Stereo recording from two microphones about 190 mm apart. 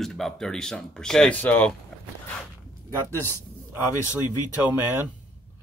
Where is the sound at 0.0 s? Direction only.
Centre (ahead or behind).